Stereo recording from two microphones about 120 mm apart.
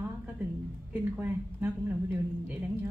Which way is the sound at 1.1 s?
15° right (ahead or behind).